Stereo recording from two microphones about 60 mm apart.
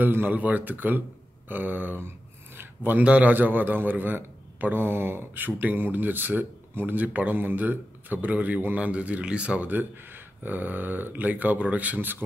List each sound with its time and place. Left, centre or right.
0.0 s a man's voice: right
1.5 s a sound: right
3.0 s a man's voice: right
9.7 s a man's voice: right